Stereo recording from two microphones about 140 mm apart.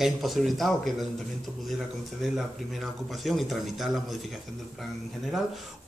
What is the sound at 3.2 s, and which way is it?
Speech, centre (ahead or behind).